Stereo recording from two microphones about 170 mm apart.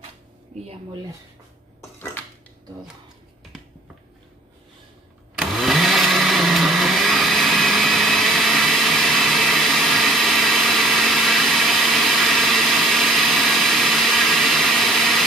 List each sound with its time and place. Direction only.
0.5 s a sound: 40° right (ahead or behind)
1.8 s dishes: 10° left (ahead or behind)
5.4 s blender: centre (ahead or behind)